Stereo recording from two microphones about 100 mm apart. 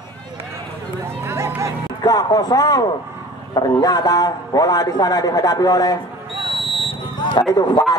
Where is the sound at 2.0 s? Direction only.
40° left (ahead or behind).